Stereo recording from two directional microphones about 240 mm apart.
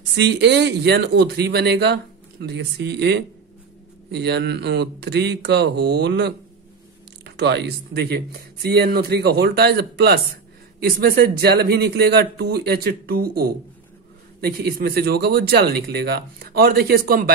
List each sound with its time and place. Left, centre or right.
0.1 s speech: right